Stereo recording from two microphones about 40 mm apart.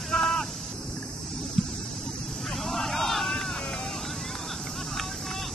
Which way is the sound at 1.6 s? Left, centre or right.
Centre.